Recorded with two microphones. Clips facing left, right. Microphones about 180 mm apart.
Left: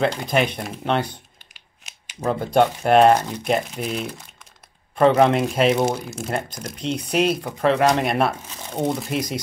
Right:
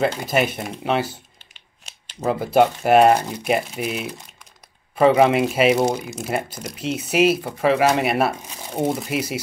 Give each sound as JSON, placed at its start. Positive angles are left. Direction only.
{"t": 0.0, "sound": "speech", "side_deg": -5}